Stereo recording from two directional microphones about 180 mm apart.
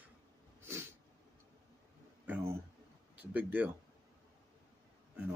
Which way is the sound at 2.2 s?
10° right (ahead or behind).